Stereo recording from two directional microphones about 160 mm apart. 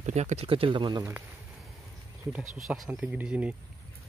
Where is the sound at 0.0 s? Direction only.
45° right (ahead or behind); by 1.0 s 30° right (ahead or behind).